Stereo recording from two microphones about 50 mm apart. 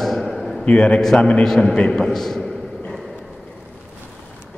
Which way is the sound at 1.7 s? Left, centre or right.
Centre.